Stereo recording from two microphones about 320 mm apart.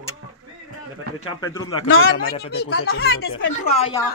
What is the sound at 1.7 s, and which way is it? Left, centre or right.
Speech, left.